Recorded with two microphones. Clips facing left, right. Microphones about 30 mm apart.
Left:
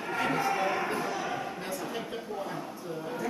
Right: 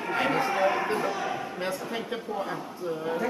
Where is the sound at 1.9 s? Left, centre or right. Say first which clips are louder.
Right 4 dB; right.